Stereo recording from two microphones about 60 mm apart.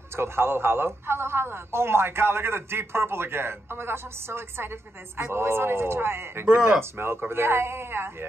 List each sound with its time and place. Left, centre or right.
0.1 s a man's voice: right